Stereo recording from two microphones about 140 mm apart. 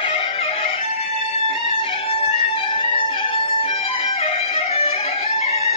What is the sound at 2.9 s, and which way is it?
Music, 45° left (ahead or behind).